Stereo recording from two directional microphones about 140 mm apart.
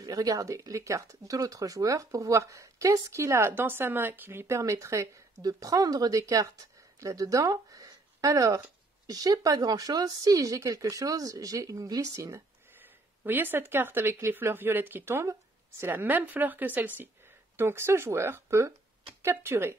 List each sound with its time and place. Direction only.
0.0 s speech: 25° right (ahead or behind)